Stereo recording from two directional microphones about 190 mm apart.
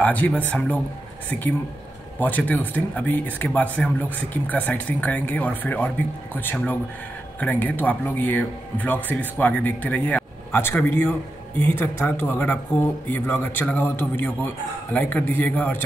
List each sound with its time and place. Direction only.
0.0 s speech: 10° left (ahead or behind)